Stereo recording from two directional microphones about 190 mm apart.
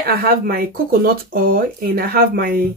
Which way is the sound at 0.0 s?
50° right (ahead or behind).